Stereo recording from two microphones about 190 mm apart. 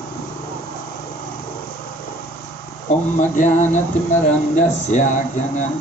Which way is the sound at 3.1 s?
40° left (ahead or behind).